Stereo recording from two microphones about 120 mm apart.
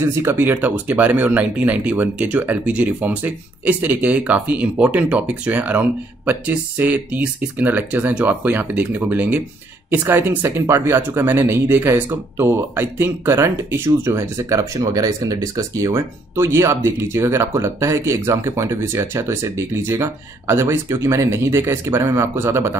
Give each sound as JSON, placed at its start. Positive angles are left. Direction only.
{"t": 0.0, "sound": "speech", "side_deg": -20}